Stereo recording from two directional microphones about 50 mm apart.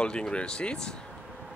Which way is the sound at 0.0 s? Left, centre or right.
Centre.